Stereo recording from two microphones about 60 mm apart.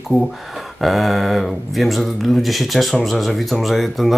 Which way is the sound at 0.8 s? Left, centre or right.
Centre.